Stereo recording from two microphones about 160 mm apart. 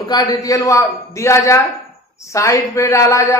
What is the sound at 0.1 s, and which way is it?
A man's voice, 25° left (ahead or behind).